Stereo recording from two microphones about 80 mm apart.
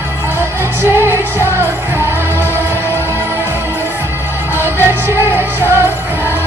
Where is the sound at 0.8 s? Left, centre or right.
Right.